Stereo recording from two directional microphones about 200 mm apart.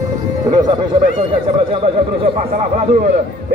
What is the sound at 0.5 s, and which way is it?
Speech, 20° right (ahead or behind).